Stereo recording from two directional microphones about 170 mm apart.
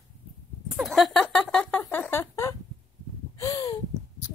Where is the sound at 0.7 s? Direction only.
Centre (ahead or behind).